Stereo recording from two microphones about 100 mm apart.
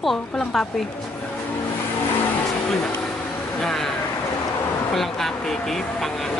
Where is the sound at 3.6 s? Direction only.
5° left (ahead or behind).